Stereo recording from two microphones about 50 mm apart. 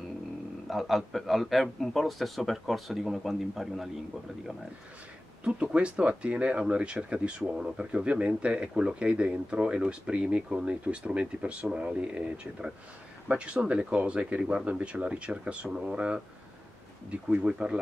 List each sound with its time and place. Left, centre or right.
0.7 s speech: centre
5.4 s speech: right